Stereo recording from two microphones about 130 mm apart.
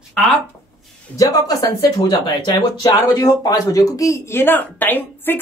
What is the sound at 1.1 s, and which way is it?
Speech, 30° left (ahead or behind).